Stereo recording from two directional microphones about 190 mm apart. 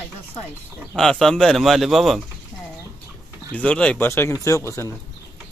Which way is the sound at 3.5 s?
5° left (ahead or behind).